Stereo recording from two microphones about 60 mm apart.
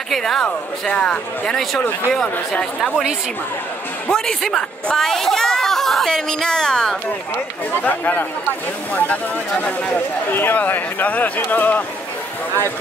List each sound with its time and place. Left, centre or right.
0.1 s speech: centre
1.5 s speech: centre
4.1 s speech: centre
7.7 s a man's voice: left